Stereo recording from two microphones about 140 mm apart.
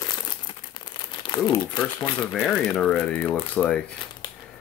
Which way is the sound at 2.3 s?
5° left (ahead or behind).